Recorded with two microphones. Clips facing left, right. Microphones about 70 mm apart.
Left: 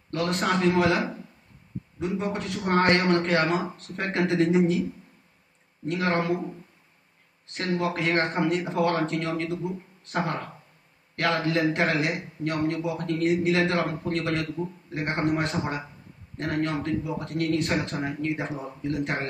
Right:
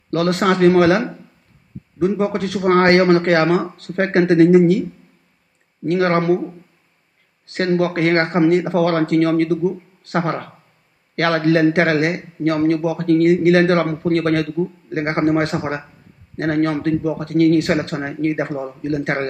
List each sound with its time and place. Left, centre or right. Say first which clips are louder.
0.1 s a man's voice: right 8 dB; right
5.9 s a man's voice: right 9 dB; right
7.4 s a man's voice: right 9 dB; right